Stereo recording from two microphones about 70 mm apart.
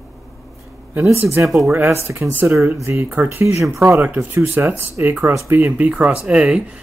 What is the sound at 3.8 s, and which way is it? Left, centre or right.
Speech, right.